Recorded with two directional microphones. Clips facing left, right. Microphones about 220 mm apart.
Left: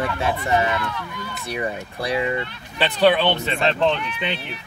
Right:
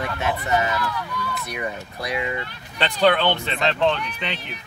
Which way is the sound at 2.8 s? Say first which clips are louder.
Left 2 dB; 5° left (ahead or behind).